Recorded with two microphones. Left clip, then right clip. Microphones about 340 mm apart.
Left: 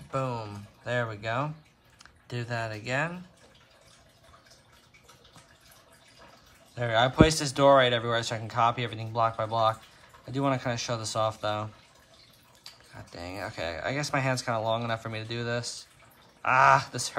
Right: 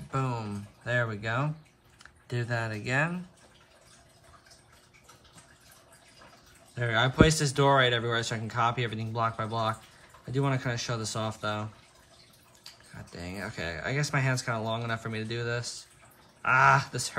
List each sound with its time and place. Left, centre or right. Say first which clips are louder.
0.1 s speech: left 1 dB; centre
6.7 s speech: left 2 dB; centre
12.6 s speech: left 1 dB; centre